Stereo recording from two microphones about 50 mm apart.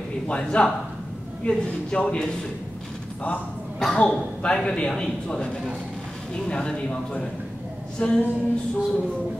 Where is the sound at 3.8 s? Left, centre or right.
Centre.